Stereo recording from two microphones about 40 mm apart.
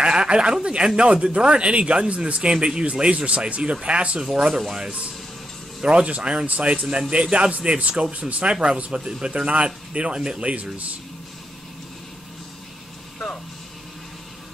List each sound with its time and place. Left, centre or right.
0.0 s speech: right
4.2 s speech: centre
5.8 s speech: right
10.4 s speech: right